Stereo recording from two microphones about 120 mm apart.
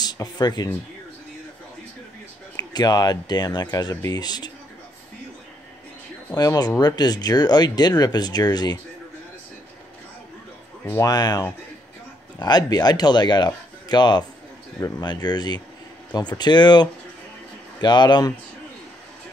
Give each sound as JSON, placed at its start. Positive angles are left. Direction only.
{"t": 0.0, "sound": "speech", "side_deg": 35}
{"t": 2.5, "sound": "speech", "side_deg": 35}
{"t": 6.3, "sound": "speech", "side_deg": 30}
{"t": 10.9, "sound": "speech", "side_deg": 30}